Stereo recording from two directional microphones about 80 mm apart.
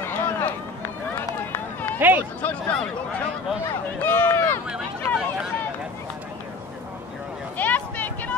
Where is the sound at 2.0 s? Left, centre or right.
Right.